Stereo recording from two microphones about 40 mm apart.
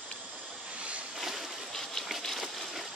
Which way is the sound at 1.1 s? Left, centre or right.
Centre.